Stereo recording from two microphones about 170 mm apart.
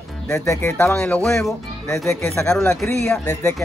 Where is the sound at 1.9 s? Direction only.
15° left (ahead or behind).